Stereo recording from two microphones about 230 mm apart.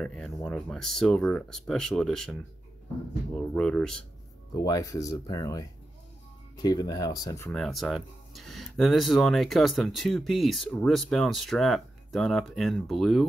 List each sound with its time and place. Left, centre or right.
0.0 s speech: centre
3.3 s speech: centre
4.6 s speech: centre
7.5 s speech: centre